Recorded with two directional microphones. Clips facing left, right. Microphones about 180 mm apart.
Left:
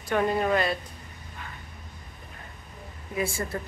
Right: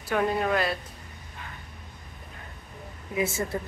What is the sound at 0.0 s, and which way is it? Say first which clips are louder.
Speech: left 1 dB; centre (ahead or behind).